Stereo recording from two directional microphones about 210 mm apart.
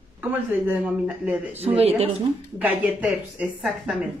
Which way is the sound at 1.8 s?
30° right (ahead or behind).